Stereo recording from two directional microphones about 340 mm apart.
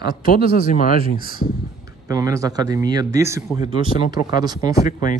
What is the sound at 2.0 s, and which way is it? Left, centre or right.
A man's voice, centre.